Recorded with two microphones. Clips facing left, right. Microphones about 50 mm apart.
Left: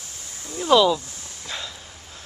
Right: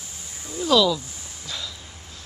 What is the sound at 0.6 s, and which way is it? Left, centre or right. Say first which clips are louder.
Speech: left 2 dB; left.